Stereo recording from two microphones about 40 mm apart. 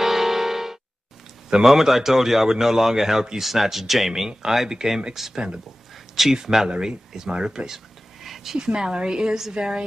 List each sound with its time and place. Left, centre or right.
0.0 s music: centre
1.5 s a man's voice: centre
4.3 s a man's voice: centre
7.2 s a sound: right
8.5 s a woman's voice: centre